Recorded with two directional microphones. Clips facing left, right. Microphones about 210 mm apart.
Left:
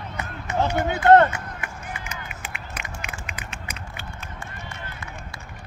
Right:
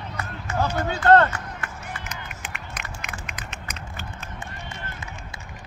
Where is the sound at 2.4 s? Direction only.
10° left (ahead or behind).